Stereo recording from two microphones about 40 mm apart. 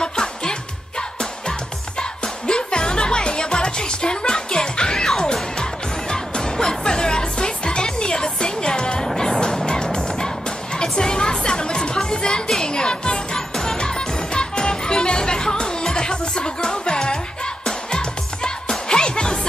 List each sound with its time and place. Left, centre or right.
0.0 s music: centre
2.0 s music: left